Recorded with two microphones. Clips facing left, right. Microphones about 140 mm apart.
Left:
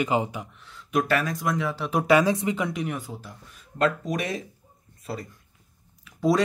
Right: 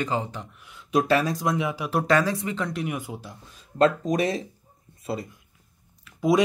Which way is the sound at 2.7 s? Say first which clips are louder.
Even; 5° right (ahead or behind).